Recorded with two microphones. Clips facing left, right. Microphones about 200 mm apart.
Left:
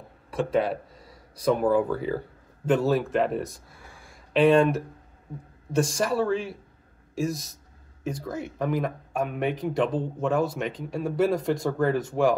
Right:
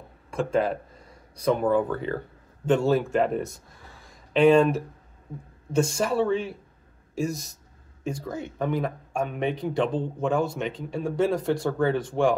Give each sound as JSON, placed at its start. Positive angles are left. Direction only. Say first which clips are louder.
{"t": 0.4, "sound": "speech", "louder": "even", "side_deg": 5}
{"t": 5.9, "sound": "speech", "louder": "right 1 dB", "side_deg": 0}
{"t": 7.2, "sound": "speech", "louder": "even", "side_deg": 30}
{"t": 8.0, "sound": "speech", "louder": "even", "side_deg": 5}